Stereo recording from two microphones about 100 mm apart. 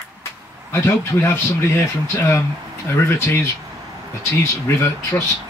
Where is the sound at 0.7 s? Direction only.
25° left (ahead or behind).